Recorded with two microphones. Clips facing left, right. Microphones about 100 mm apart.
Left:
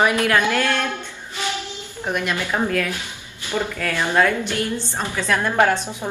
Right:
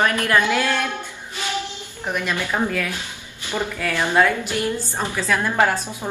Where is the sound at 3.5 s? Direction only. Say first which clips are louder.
Left 1 dB; 15° right (ahead or behind).